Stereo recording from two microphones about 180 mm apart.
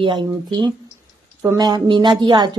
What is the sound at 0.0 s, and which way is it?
A woman's voice, 25° right (ahead or behind).